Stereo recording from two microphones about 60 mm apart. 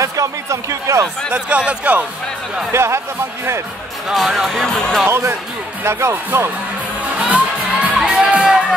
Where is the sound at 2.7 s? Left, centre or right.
Right.